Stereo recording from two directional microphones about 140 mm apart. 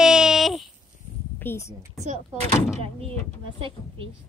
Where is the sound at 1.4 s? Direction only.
20° left (ahead or behind).